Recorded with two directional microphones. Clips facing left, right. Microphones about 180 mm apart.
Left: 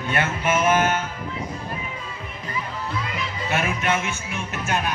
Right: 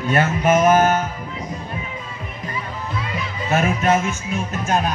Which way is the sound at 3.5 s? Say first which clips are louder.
Right 6 dB; 40° right (ahead or behind).